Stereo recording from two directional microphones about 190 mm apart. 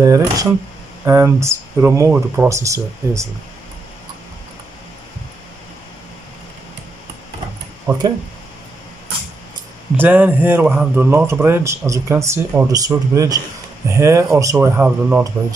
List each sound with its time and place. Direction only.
0.0 s a man's voice: 15° right (ahead or behind)
7.9 s a man's voice: 15° right (ahead or behind)
9.9 s a man's voice: 10° right (ahead or behind)